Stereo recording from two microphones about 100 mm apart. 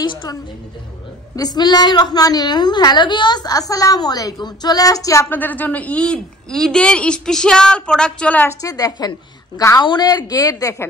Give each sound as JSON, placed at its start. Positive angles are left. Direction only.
{"t": 0.0, "sound": "a woman's voice", "side_deg": 50}
{"t": 5.3, "sound": "a woman's voice", "side_deg": 15}
{"t": 8.5, "sound": "a woman's voice", "side_deg": 35}